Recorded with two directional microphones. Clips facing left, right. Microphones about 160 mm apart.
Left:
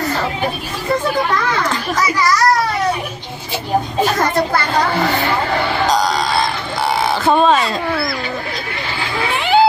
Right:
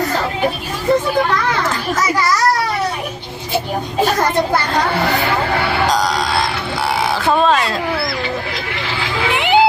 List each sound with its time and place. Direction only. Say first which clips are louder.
5.9 s music: left 1 dB; centre (ahead or behind)
7.0 s a sound: left 2 dB; centre (ahead or behind)
9.3 s music: right 1 dB; 20° right (ahead or behind)